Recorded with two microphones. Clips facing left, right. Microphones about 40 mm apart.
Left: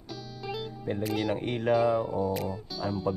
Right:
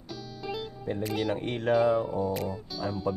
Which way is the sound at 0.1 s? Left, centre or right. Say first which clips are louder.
Right 1 dB; centre.